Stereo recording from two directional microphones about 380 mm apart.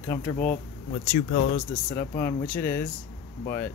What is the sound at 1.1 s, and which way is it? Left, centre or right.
Speech, left.